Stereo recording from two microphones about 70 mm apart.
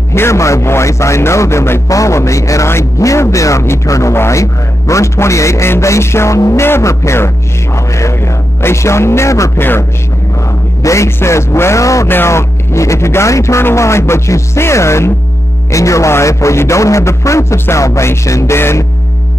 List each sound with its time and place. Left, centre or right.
0.1 s a man's voice: left
9.6 s a man's voice: left
10.8 s a sound: left
11.1 s a man's voice: left
12.1 s a man's voice: left